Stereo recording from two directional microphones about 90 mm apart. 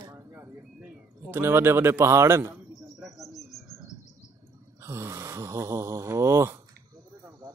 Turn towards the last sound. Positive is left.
turn(degrees=-30)  # may be behind; listen again after turning